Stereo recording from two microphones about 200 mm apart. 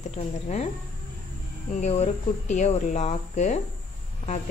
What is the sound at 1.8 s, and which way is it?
Speech, 35° left (ahead or behind).